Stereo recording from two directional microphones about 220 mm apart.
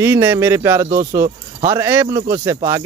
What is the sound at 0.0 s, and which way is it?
Speech, 10° right (ahead or behind).